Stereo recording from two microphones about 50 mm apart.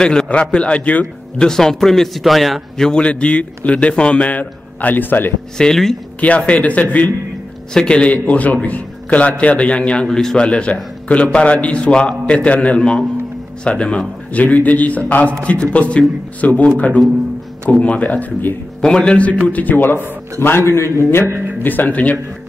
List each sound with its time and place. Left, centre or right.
0.0 s a man's voice: centre
1.5 s a man's voice: centre
2.8 s a man's voice: centre; by 5.3 s left
5.6 s speech: centre
6.2 s a man's voice: left
7.7 s a man's voice: centre
10.0 s speech: centre
10.3 s a man's voice: left
14.4 s a man's voice: left
18.8 s a man's voice: centre
19.4 s a man's voice: left
20.3 s a man's voice: left
21.6 s a man's voice: left